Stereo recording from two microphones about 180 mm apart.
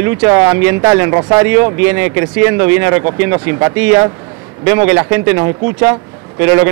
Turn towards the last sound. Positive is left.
turn(degrees=-15)  # may be behind; listen again after turning